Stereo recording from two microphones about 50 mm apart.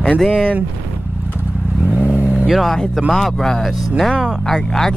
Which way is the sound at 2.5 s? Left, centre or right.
Centre.